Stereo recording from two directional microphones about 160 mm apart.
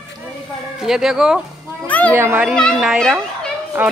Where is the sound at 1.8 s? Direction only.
10° left (ahead or behind).